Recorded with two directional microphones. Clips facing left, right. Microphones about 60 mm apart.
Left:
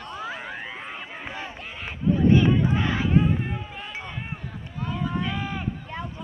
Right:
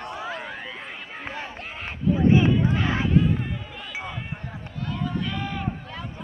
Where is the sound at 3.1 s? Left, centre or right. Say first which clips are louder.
Even; left.